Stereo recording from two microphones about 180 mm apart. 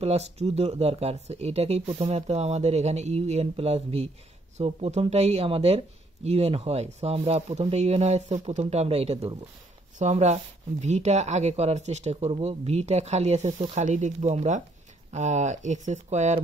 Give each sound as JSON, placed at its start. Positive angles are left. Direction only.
{"t": 0.0, "sound": "speech", "side_deg": -35}